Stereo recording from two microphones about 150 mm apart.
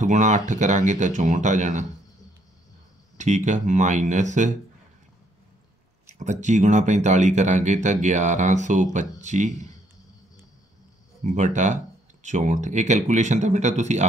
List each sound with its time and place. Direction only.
0.0 s speech: 55° right (ahead or behind)
3.2 s speech: 55° right (ahead or behind)
6.0 s a sound: 55° right (ahead or behind)
6.4 s speech: 55° right (ahead or behind)
11.2 s speech: 55° right (ahead or behind)